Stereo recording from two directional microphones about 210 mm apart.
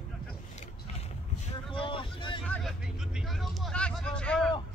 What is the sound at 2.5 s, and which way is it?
Vehicle, centre (ahead or behind).